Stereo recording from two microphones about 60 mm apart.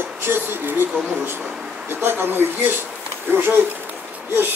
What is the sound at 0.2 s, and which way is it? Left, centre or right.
Speech, right.